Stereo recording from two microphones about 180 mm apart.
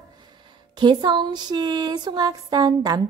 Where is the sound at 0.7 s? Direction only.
25° right (ahead or behind).